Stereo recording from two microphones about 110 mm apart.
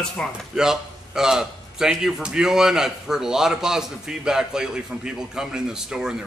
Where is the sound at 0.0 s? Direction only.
Centre (ahead or behind).